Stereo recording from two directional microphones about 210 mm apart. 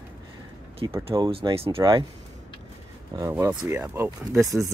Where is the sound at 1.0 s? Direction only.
25° right (ahead or behind).